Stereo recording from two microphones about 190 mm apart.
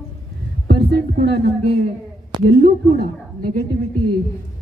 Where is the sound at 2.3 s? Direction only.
25° right (ahead or behind).